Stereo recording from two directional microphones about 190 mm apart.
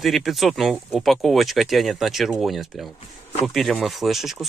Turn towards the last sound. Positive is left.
turn(degrees=0)  # may be behind; listen again after turning